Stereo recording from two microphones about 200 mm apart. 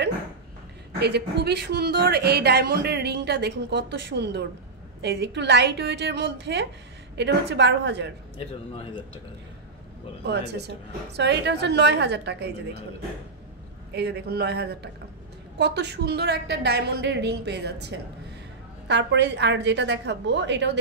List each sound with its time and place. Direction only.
0.9 s a woman's voice: 55° right (ahead or behind)
8.4 s speech: 30° left (ahead or behind)
10.2 s a woman's voice: 55° right (ahead or behind)
13.9 s a woman's voice: 55° right (ahead or behind)